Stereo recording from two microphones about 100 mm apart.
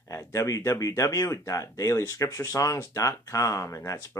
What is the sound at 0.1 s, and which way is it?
Speech, 30° left (ahead or behind).